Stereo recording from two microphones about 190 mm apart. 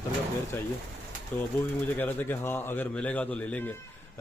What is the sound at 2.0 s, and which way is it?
Speech, 10° left (ahead or behind).